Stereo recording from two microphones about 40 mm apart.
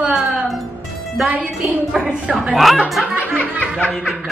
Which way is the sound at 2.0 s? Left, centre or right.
Right.